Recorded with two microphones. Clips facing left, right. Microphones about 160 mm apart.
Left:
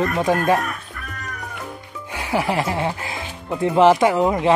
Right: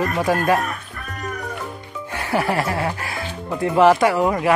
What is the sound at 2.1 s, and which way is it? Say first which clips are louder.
Speech: even; 10° left (ahead or behind).